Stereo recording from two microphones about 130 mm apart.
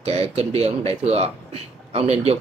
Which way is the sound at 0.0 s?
50° right (ahead or behind).